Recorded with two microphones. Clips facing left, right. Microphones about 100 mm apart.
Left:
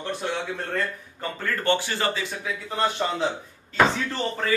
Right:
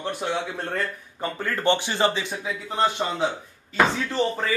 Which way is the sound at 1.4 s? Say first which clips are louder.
Right 1 dB; 20° right (ahead or behind).